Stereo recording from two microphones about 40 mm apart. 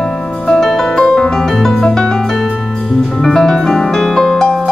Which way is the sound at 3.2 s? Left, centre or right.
Centre.